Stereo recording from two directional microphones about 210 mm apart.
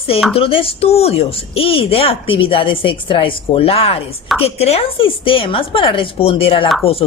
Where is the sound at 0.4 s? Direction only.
25° left (ahead or behind).